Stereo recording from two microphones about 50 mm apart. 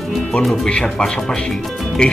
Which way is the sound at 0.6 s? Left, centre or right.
Centre.